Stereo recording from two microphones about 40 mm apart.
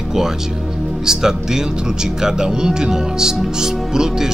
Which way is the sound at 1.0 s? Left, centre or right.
Centre.